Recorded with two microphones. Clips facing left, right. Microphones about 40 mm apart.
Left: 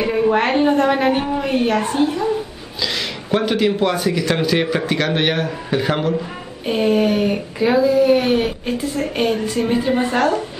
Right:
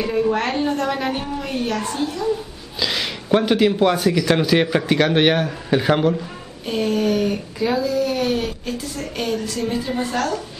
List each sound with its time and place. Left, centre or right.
0.0 s speech: left
2.8 s speech: centre
6.6 s speech: left